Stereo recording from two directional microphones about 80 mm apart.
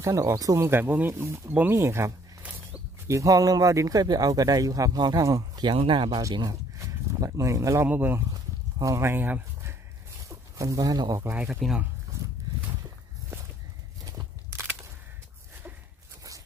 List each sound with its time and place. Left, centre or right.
0.0 s speech: right
0.7 s speech: right
1.1 s speech: right
5.7 s speech: right
6.8 s a sound: right
7.9 s speech: right
8.3 s a sound: right
9.0 s speech: right
10.2 s speech: right
11.4 s speech: centre
12.1 s dog: right